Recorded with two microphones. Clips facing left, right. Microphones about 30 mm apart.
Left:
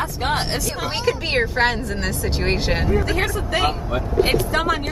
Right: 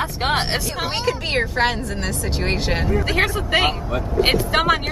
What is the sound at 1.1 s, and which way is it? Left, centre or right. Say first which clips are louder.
Speech: left 3 dB; centre.